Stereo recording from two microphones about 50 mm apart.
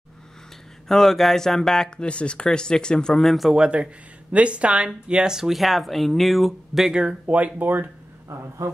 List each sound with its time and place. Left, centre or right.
0.8 s speech: centre
2.0 s speech: left
3.3 s a man's voice: centre
3.5 s speech: centre
7.2 s speech: right